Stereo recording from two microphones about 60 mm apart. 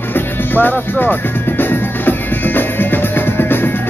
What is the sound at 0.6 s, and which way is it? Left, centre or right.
Speech, left.